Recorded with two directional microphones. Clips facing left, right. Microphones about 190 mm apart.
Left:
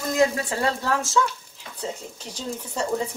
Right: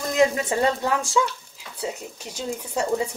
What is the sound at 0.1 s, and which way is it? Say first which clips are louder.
Speech: right 1 dB; 20° right (ahead or behind).